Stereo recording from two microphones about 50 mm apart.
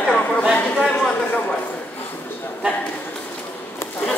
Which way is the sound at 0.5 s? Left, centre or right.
Left.